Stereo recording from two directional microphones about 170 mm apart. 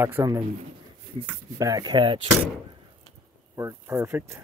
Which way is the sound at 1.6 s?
20° right (ahead or behind).